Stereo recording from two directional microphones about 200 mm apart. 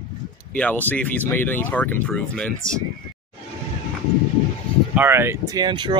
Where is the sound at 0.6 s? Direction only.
10° left (ahead or behind).